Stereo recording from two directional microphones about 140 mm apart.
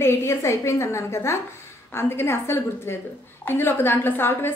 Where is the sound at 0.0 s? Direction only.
20° left (ahead or behind).